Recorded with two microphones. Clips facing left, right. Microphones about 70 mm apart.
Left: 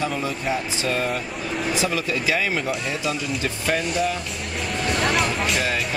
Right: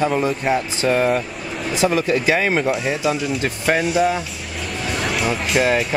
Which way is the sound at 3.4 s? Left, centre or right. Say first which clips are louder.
Right 5 dB; right.